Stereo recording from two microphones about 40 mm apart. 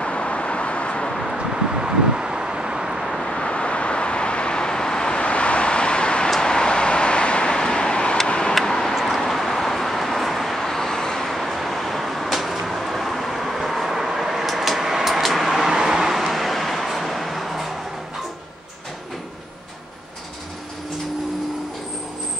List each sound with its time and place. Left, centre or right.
0.0 s vehicle: left
1.4 s vehicle: centre
3.2 s vehicle: centre
8.5 s vehicle: centre
11.2 s a sound: centre
15.7 s vehicle: centre